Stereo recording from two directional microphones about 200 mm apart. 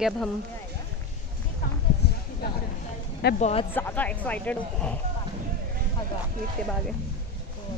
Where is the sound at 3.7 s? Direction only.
10° left (ahead or behind).